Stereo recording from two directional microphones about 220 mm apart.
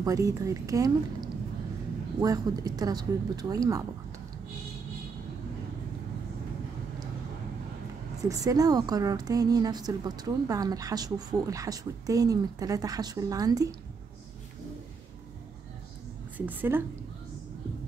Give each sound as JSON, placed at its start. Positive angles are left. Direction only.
{"t": 0.0, "sound": "a woman's voice", "side_deg": -15}
{"t": 2.1, "sound": "a woman's voice", "side_deg": -15}
{"t": 8.2, "sound": "a woman's voice", "side_deg": -15}
{"t": 16.3, "sound": "a woman's voice", "side_deg": -10}